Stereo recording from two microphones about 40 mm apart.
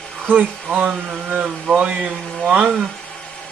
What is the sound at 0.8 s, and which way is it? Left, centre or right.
Speech, right.